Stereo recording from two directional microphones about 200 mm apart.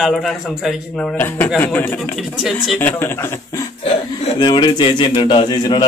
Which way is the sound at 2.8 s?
10° left (ahead or behind).